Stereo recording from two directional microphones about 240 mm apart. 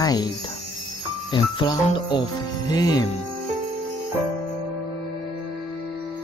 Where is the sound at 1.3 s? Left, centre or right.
Centre.